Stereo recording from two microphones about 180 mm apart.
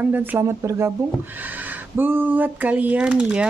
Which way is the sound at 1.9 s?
10° right (ahead or behind).